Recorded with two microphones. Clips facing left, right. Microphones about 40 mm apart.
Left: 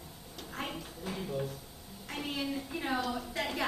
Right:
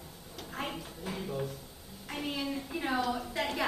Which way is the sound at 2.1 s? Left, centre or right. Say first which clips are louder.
Right 1 dB; centre.